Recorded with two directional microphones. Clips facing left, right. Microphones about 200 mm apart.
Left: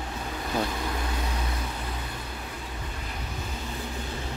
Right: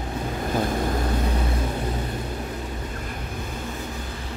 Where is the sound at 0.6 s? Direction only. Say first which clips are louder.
Right 7 dB; 45° right (ahead or behind).